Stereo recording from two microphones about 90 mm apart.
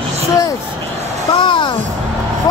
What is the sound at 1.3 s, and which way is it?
Speech, 65° left (ahead or behind).